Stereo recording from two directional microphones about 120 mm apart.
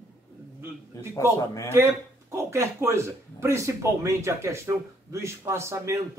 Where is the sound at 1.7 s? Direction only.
25° right (ahead or behind).